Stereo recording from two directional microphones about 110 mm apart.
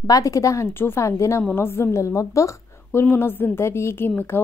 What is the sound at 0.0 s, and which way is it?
Speech, 30° left (ahead or behind).